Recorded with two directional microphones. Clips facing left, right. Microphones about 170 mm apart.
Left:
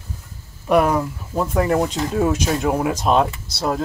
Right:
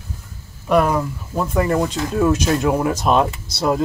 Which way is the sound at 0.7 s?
5° left (ahead or behind).